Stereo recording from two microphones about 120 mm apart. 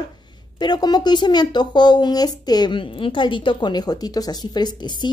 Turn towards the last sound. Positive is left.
turn(degrees=35)  # may be behind; listen again after turning